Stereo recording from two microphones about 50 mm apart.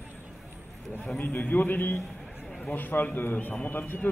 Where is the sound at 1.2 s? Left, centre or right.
Left.